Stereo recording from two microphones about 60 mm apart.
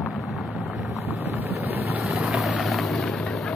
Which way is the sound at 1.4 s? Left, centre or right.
Right.